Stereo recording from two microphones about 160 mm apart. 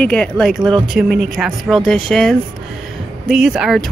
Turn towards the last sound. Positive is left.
turn(degrees=0)  # may be behind; listen again after turning